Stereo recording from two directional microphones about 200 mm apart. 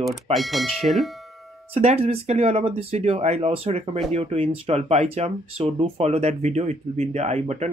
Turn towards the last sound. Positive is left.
turn(degrees=-35)  # may be behind; listen again after turning